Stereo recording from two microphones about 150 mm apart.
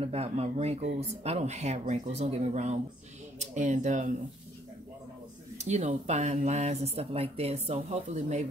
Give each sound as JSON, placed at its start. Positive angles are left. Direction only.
{"t": 0.0, "sound": "speech", "side_deg": -45}
{"t": 5.6, "sound": "speech", "side_deg": -50}